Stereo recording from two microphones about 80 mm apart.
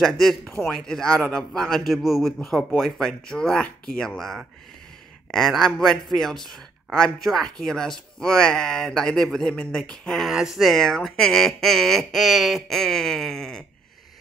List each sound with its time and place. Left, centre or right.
0.0 s speech: centre
5.3 s speech: centre